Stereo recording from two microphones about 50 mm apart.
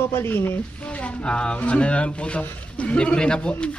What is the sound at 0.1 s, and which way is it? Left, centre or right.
Speech, left.